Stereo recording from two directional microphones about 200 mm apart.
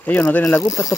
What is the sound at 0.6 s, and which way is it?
Speech, 15° left (ahead or behind).